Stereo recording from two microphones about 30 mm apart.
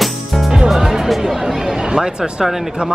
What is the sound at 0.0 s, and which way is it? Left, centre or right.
Music, centre.